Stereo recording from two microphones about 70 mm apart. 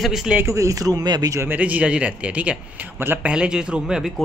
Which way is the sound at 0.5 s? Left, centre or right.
Right.